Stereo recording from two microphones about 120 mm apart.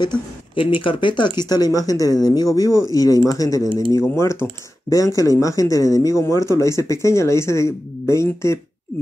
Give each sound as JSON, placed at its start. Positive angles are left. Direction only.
{"t": 0.0, "sound": "speech", "side_deg": 45}